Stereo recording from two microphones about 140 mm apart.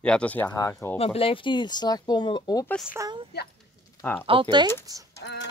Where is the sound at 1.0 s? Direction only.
45° left (ahead or behind).